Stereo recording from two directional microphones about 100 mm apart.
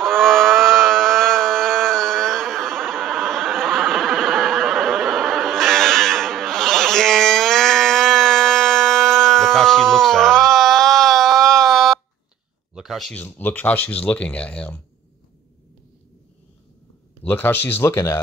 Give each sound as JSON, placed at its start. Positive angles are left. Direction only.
{"t": 0.0, "sound": "livestock", "side_deg": 5}
{"t": 12.7, "sound": "a sound", "side_deg": 0}
{"t": 13.1, "sound": "speech", "side_deg": 15}
{"t": 17.2, "sound": "speech", "side_deg": 20}